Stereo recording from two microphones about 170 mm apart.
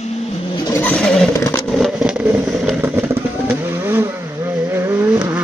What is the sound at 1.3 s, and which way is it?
Vehicle, 20° left (ahead or behind).